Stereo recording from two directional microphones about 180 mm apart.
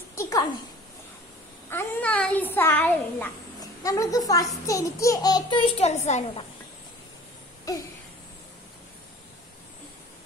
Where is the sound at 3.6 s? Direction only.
20° left (ahead or behind); by 6.4 s 40° left (ahead or behind).